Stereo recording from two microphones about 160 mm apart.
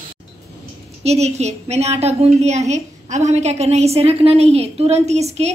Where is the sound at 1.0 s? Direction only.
40° right (ahead or behind).